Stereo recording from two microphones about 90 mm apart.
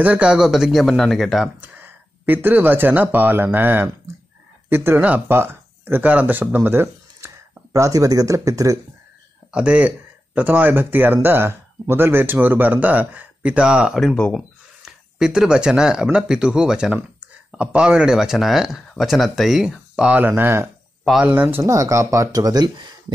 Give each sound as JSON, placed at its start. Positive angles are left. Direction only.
{"t": 0.0, "sound": "speech", "side_deg": -15}
{"t": 1.6, "sound": "speech", "side_deg": -20}
{"t": 9.5, "sound": "speech", "side_deg": -15}
{"t": 14.1, "sound": "speech", "side_deg": 15}
{"t": 14.9, "sound": "speech", "side_deg": -5}
{"t": 21.6, "sound": "speech", "side_deg": -35}